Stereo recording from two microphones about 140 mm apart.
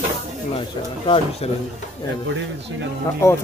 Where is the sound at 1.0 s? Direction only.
40° left (ahead or behind).